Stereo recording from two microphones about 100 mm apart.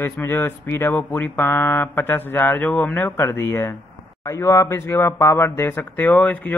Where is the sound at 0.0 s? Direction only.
20° left (ahead or behind).